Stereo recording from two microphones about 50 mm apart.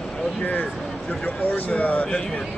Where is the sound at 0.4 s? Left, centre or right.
Left.